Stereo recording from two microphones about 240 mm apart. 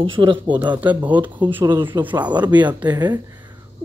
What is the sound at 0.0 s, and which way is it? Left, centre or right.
Speech, right.